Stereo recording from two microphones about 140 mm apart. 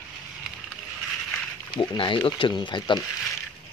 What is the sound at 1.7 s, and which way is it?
Speech, 35° left (ahead or behind).